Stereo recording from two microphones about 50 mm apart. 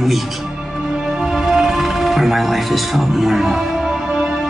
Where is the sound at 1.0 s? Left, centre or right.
Centre.